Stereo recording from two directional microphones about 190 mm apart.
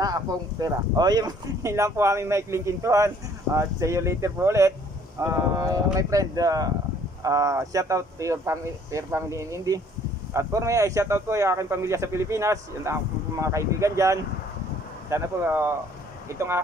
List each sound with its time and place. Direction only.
0.0 s speech: 20° right (ahead or behind)